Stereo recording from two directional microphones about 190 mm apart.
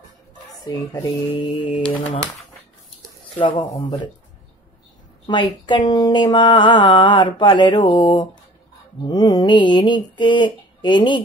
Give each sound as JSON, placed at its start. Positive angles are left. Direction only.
{"t": 1.0, "sound": "speech", "side_deg": 25}
{"t": 3.3, "sound": "speech", "side_deg": 25}
{"t": 5.2, "sound": "speech", "side_deg": 25}